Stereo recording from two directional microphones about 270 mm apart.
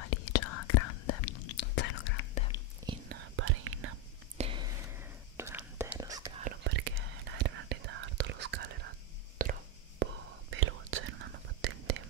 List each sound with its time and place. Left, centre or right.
0.1 s whispering: left
1.6 s whispering: left
2.3 s whispering: left
3.1 s whispering: right
4.4 s whispering: centre
6.6 s whispering: right
9.4 s a sound: right
10.5 s whispering: right